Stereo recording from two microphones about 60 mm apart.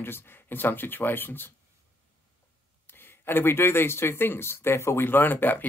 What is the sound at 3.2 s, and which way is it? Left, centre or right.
A man's voice, left.